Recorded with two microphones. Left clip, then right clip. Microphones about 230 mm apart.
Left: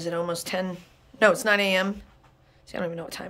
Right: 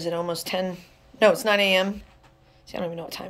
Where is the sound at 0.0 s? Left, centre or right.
Centre.